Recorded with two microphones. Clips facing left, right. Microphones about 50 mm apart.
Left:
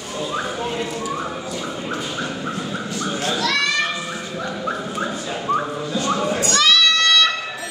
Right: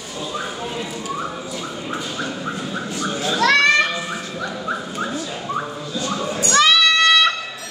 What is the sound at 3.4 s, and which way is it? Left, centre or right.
Children playing, right.